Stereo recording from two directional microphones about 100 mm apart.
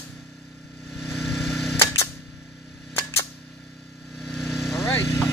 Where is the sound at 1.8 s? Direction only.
30° left (ahead or behind).